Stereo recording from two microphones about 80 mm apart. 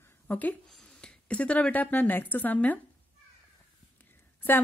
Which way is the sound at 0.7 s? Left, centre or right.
Centre.